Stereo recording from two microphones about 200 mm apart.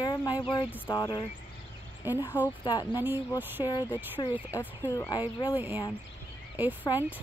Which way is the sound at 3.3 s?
10° right (ahead or behind).